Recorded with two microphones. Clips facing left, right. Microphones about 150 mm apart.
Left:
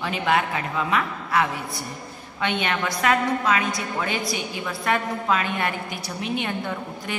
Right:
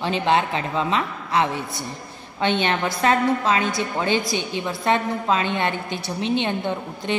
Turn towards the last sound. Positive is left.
turn(degrees=-25)  # may be behind; listen again after turning